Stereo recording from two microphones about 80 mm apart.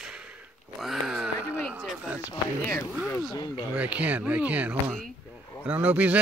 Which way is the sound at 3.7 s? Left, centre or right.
Centre.